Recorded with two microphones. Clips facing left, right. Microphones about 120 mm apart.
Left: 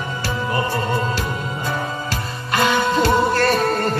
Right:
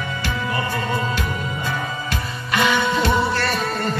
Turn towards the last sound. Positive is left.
turn(degrees=45)  # may be behind; listen again after turning